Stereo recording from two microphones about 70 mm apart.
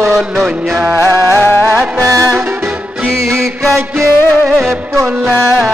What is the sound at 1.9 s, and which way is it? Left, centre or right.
Music, right.